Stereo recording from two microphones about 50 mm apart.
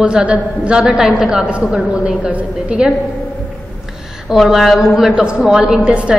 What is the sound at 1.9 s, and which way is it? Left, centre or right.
Speech, right.